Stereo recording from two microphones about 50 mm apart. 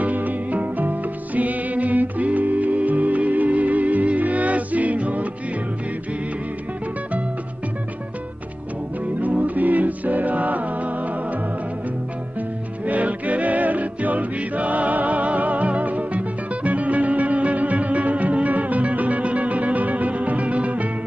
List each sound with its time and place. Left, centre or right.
0.0 s music: right
9.2 s music: right
12.4 s music: right